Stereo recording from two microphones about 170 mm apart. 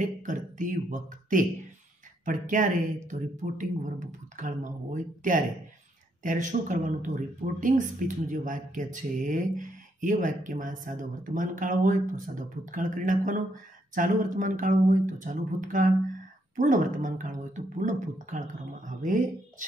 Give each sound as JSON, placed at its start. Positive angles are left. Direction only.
{"t": 0.0, "sound": "speech", "side_deg": -50}